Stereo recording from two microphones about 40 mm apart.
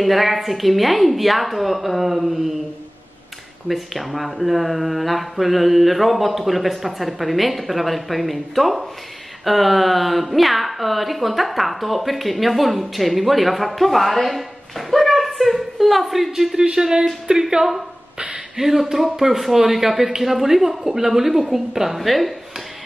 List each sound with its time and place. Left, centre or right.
0.0 s a woman's voice: centre
3.6 s a woman's voice: centre